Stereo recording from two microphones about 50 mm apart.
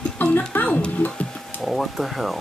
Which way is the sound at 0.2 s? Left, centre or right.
Left.